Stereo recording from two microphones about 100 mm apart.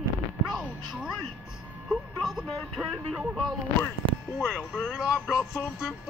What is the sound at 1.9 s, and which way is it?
Speech, 5° right (ahead or behind).